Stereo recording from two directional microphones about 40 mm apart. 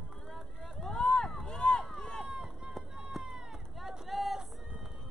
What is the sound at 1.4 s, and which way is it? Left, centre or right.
Run, left.